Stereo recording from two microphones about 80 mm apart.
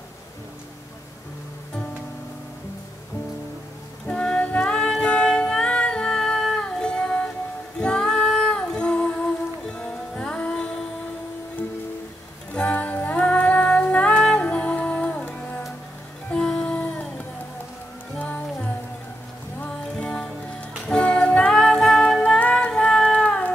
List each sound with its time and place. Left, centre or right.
4.1 s music: centre
7.8 s female singing: centre
12.5 s music: centre